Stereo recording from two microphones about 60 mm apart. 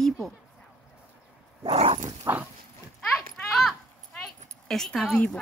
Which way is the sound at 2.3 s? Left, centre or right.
Right.